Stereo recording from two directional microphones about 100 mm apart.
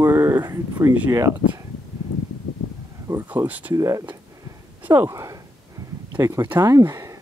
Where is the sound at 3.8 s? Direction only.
35° right (ahead or behind).